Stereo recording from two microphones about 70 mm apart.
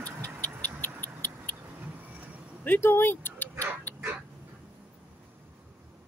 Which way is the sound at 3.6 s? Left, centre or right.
Left.